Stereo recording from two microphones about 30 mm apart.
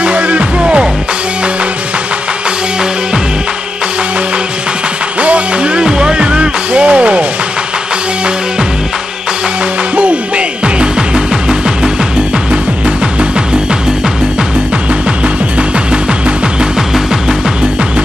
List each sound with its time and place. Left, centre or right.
0.0 s music: right
5.2 s music: right
5.8 s music: right
9.9 s music: right